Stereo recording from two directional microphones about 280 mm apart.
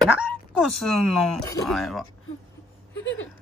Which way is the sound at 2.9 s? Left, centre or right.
Left.